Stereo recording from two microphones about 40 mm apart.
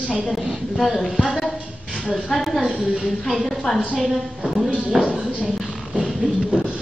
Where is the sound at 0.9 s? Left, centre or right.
Centre.